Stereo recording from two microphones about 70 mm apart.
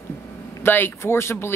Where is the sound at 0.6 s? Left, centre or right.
Left.